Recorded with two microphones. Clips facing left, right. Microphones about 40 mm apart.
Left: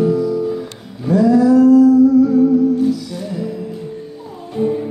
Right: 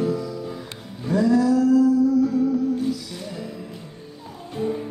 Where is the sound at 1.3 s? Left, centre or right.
Left.